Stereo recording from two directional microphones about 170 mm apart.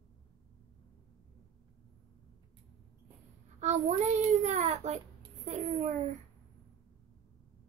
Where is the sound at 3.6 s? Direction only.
40° right (ahead or behind).